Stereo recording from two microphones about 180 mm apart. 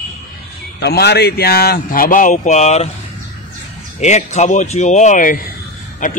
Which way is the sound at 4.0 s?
40° left (ahead or behind).